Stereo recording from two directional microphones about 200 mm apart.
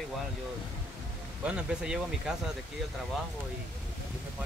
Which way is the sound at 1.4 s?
5° right (ahead or behind).